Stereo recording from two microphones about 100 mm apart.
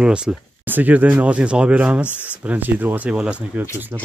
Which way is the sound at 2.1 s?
20° left (ahead or behind).